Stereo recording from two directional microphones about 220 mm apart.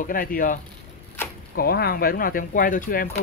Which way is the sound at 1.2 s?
10° left (ahead or behind).